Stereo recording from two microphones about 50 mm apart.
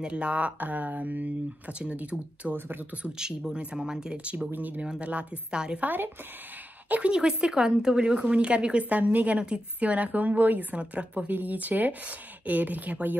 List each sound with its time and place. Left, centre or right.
0.0 s speech: right
1.7 s speech: right
3.2 s speech: centre
4.5 s speech: right
5.8 s speech: right
6.9 s speech: right